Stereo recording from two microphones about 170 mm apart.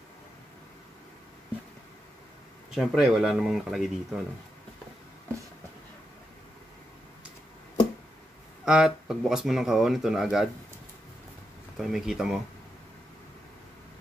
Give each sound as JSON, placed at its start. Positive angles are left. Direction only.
{"t": 2.7, "sound": "speech", "side_deg": 0}
{"t": 8.6, "sound": "speech", "side_deg": -5}
{"t": 11.7, "sound": "speech", "side_deg": 0}